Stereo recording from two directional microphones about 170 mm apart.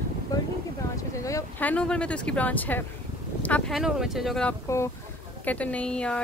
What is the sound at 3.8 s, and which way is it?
Speech, centre (ahead or behind).